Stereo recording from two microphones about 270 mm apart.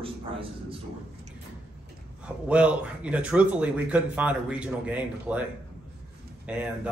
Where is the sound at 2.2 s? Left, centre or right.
Centre.